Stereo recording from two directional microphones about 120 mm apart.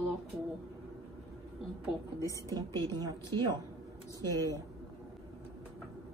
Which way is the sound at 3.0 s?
30° right (ahead or behind).